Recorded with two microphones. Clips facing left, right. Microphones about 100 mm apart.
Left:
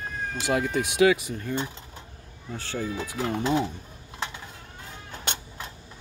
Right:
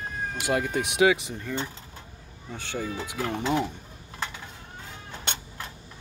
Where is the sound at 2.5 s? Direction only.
20° right (ahead or behind).